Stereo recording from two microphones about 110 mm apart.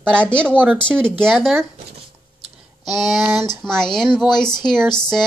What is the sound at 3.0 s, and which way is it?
Speech, centre (ahead or behind).